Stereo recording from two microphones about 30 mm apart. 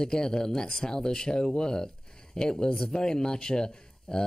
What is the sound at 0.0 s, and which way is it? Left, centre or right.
Speech, left.